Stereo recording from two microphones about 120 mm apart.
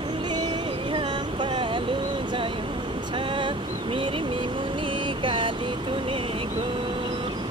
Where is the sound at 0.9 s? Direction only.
45° right (ahead or behind).